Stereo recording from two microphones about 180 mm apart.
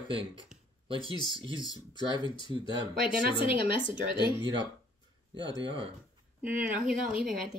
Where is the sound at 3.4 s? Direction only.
30° left (ahead or behind).